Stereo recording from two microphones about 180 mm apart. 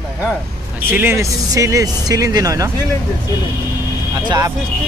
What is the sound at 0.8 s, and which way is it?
Speech, 10° right (ahead or behind).